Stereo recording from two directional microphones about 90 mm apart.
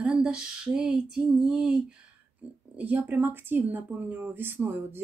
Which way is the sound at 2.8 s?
20° right (ahead or behind).